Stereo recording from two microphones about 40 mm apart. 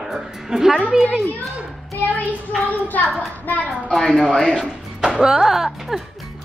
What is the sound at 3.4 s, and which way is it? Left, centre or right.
Speech, left.